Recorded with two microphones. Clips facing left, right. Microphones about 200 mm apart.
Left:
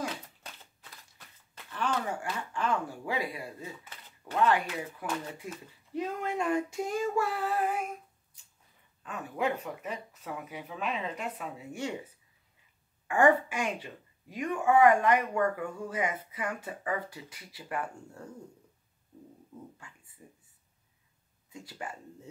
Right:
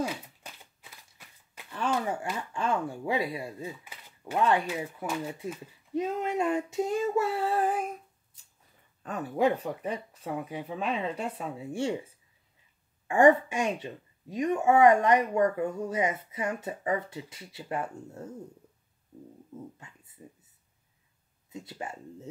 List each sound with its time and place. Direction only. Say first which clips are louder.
0.0 s a sound: right 4 dB; 10° right (ahead or behind)
2.5 s speech: right 2 dB; 25° right (ahead or behind)
3.8 s a sound: right 4 dB; 15° right (ahead or behind)
4.4 s speech: right 1 dB; 25° right (ahead or behind)
5.0 s speech: right 2 dB; 5° right (ahead or behind)
5.9 s female singing: right 4 dB; 20° right (ahead or behind)
9.0 s speech: right 6 dB; 35° right (ahead or behind)
13.1 s speech: right 4 dB; 25° right (ahead or behind)
20.2 s speech: right 5 dB; 20° right (ahead or behind)
21.5 s speech: right 3 dB; 20° right (ahead or behind)